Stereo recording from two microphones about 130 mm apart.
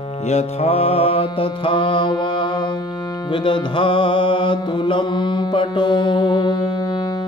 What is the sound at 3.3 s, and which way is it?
Music, 40° left (ahead or behind).